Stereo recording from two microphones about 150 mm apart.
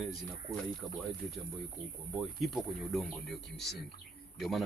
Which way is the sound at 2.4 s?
Centre (ahead or behind).